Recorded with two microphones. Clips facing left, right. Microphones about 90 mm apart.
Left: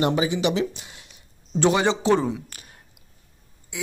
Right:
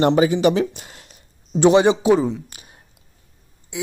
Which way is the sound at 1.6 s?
20° right (ahead or behind).